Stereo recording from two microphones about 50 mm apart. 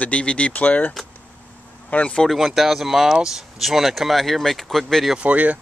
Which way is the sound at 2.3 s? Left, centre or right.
Centre.